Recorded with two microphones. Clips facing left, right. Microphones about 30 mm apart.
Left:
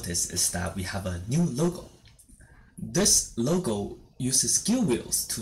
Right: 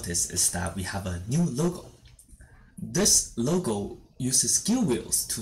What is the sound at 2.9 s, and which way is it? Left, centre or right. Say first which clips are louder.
Speech: even; centre.